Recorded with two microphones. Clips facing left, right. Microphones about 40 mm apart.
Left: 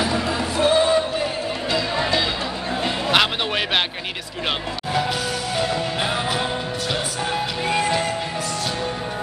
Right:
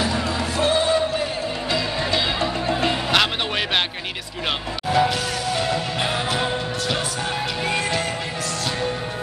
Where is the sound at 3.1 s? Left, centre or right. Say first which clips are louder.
Left 4 dB; centre.